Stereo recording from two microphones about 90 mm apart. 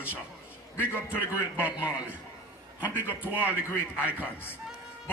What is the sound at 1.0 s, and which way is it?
A man's voice, 15° right (ahead or behind).